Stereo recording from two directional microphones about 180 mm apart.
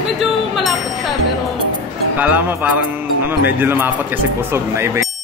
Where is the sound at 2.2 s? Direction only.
10° right (ahead or behind).